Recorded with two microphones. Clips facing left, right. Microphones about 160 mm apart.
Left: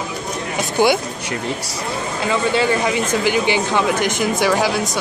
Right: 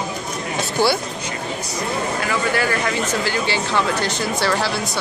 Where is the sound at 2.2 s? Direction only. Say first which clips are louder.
Left 6 dB; 20° left (ahead or behind).